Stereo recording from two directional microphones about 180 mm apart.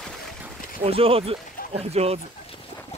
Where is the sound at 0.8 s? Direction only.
30° right (ahead or behind).